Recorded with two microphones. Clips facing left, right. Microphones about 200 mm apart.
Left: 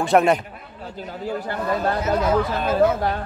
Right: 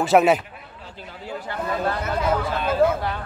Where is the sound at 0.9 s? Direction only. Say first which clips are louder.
Left 6 dB; 40° left (ahead or behind).